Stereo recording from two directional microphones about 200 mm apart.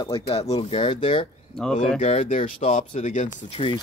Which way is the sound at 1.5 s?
Centre (ahead or behind).